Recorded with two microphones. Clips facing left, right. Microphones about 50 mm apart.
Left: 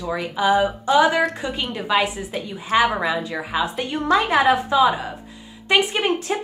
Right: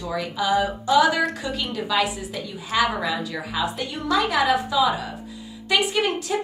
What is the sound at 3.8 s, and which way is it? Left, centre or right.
A woman's voice, left.